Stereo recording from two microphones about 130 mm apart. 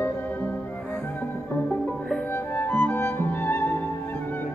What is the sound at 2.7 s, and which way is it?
Music, 15° left (ahead or behind).